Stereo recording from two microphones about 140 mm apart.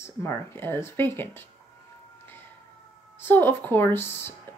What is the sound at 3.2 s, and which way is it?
Speech, 15° left (ahead or behind).